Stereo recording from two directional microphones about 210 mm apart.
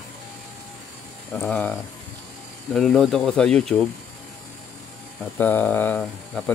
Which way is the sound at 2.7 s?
Centre (ahead or behind).